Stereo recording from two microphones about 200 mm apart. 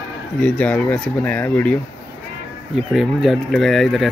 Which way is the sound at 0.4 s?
5° left (ahead or behind).